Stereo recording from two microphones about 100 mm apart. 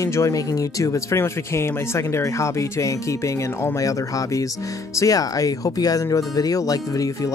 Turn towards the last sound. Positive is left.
turn(degrees=35)  # may be behind; listen again after turning